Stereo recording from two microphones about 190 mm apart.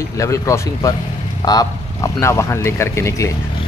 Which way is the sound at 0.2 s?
15° left (ahead or behind).